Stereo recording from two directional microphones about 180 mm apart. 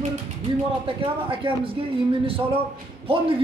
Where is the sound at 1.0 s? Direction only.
30° right (ahead or behind).